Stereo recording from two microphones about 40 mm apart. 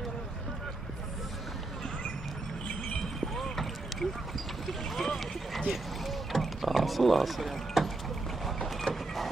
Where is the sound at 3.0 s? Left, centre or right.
Centre.